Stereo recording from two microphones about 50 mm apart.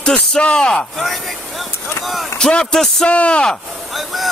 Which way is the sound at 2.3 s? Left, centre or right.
Centre.